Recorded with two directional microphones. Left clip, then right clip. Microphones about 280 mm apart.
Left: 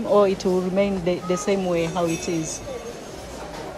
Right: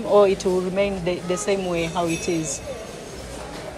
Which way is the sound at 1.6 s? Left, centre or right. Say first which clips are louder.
Left 1 dB; centre.